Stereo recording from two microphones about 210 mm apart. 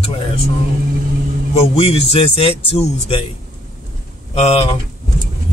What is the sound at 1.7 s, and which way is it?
Speech, 30° left (ahead or behind).